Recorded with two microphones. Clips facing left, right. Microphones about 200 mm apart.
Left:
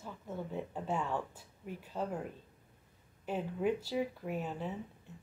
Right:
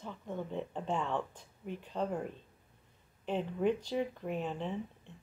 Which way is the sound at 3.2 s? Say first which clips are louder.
Right 2 dB; 10° left (ahead or behind).